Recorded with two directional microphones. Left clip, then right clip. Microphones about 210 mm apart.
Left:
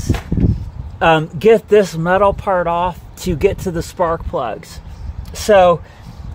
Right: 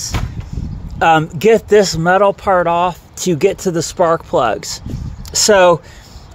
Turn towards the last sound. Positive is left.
turn(degrees=-35)  # may be behind; listen again after turning